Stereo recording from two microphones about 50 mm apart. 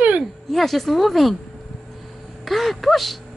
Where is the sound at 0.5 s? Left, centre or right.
Centre.